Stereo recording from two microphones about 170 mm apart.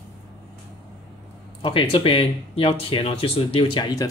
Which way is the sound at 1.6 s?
30° left (ahead or behind).